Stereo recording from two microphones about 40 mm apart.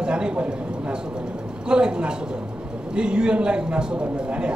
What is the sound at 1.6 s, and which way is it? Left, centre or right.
A woman's voice, right.